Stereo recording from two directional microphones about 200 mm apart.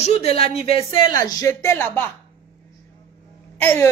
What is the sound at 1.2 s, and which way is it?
Speech, 15° left (ahead or behind).